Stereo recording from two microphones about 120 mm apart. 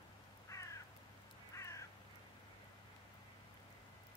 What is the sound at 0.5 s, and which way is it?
Crow, 25° left (ahead or behind).